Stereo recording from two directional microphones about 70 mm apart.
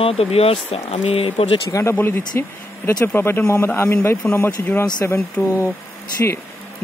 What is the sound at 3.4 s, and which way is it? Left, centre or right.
Speech, left.